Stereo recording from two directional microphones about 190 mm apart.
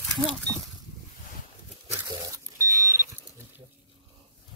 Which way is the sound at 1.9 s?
20° right (ahead or behind).